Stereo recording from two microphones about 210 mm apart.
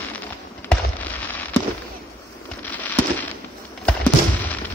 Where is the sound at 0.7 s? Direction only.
10° left (ahead or behind).